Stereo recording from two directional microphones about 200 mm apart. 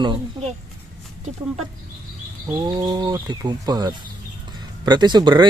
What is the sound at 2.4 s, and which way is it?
Speech, 20° right (ahead or behind).